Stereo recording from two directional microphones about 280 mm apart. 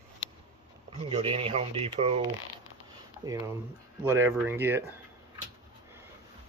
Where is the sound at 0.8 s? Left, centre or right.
Right.